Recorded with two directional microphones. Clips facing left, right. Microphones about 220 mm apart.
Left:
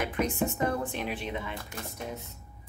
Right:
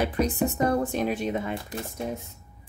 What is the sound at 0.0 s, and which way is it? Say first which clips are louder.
Speech: right 4 dB; 35° right (ahead or behind).